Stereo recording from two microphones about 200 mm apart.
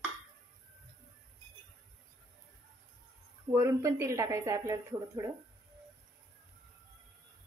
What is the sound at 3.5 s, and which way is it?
A woman's voice, 15° right (ahead or behind).